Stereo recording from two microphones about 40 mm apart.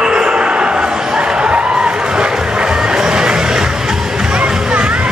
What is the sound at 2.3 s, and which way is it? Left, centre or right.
Music, centre.